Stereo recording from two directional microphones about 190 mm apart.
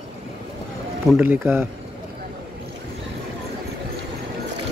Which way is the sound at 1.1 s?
10° right (ahead or behind).